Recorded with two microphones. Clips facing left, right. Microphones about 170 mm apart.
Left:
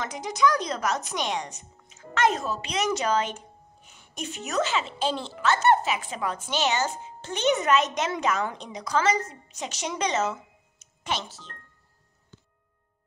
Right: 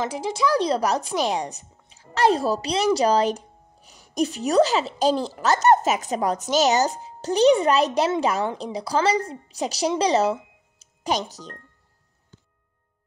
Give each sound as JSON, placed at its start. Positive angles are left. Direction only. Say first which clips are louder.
{"t": 0.0, "sound": "a woman's voice", "louder": "right 1 dB", "side_deg": -30}